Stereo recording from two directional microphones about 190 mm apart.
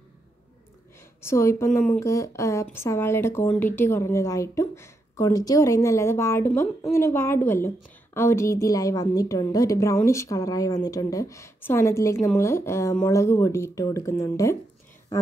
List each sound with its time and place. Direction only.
1.2 s speech: 15° left (ahead or behind)